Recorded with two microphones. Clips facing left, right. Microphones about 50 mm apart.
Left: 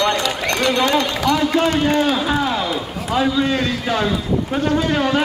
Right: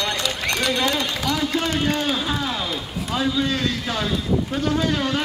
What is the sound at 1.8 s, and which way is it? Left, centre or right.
Speech, centre.